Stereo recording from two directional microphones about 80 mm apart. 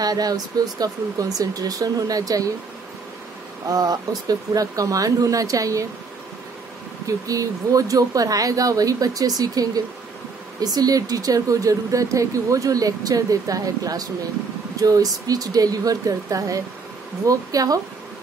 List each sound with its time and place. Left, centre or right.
0.0 s speech: right
3.6 s speech: right
7.2 s speech: right